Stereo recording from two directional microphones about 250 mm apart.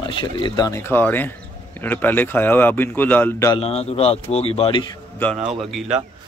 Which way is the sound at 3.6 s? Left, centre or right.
Left.